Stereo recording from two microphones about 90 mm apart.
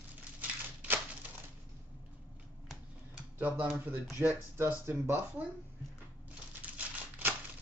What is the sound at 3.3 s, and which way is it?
Speech, 20° right (ahead or behind).